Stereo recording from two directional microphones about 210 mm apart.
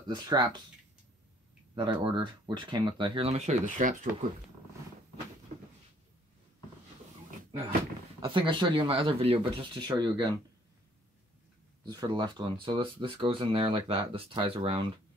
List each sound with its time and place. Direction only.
0.1 s speech: 20° right (ahead or behind)
1.8 s speech: 20° right (ahead or behind); by 4.1 s 40° right (ahead or behind)
5.5 s a sound: 35° right (ahead or behind)
8.2 s speech: 25° right (ahead or behind)
11.8 s speech: 20° right (ahead or behind)